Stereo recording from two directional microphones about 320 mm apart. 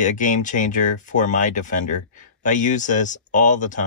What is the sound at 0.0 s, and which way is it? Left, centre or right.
Speech, left.